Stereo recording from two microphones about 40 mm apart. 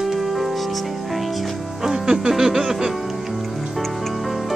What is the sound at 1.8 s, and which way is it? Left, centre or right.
Music, centre.